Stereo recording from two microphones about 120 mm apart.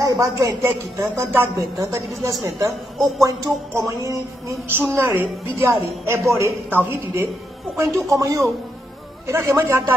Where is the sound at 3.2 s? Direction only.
30° right (ahead or behind).